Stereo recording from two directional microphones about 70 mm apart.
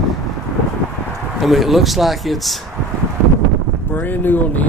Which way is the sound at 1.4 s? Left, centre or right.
Centre.